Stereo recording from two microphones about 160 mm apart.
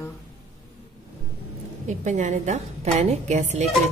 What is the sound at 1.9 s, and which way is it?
A woman's voice, 50° right (ahead or behind).